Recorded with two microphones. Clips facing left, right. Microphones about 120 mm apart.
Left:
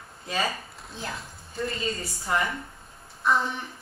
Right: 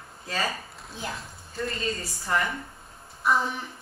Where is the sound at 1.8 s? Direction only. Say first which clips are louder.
Even; 25° left (ahead or behind).